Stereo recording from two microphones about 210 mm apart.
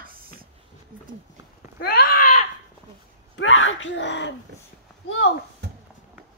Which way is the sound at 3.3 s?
70° left (ahead or behind).